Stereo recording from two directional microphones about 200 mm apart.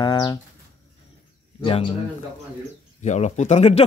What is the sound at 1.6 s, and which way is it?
Speech, 25° left (ahead or behind).